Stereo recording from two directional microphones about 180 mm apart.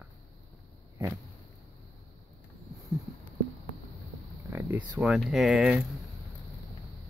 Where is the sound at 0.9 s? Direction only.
15° right (ahead or behind).